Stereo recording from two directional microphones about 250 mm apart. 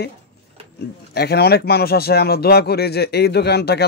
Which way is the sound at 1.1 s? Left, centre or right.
Left.